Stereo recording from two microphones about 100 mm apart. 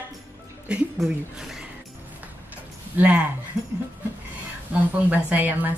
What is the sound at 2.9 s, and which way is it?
Speech, 15° right (ahead or behind).